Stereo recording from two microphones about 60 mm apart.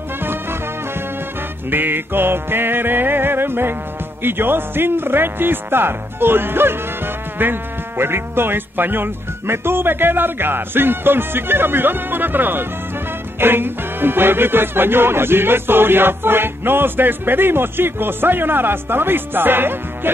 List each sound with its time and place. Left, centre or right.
0.2 s music: right
1.7 s speech: right
8.0 s speech: right